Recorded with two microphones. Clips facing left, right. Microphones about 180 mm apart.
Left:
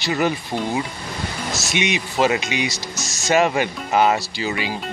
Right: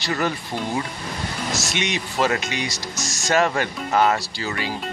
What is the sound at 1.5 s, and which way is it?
Speech, 10° left (ahead or behind).